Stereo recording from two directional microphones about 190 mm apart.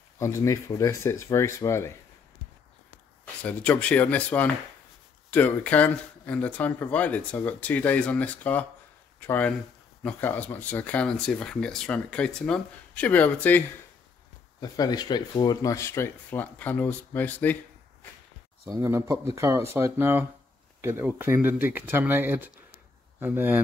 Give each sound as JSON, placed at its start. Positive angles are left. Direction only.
{"t": 0.2, "sound": "speech", "side_deg": 15}
{"t": 3.4, "sound": "speech", "side_deg": 10}
{"t": 14.6, "sound": "speech", "side_deg": 20}
{"t": 18.7, "sound": "speech", "side_deg": -15}